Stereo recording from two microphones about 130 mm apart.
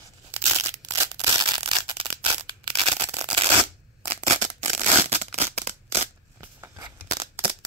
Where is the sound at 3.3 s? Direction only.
45° right (ahead or behind).